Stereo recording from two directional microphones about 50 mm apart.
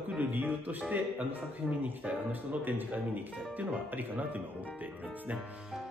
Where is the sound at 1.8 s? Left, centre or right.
Right.